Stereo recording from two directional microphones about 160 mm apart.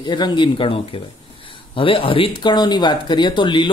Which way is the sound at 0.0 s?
30° left (ahead or behind).